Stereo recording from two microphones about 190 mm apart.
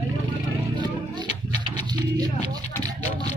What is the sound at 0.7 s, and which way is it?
Music, 25° right (ahead or behind).